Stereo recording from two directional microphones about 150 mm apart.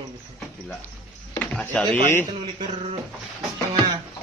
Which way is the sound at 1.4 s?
5° left (ahead or behind).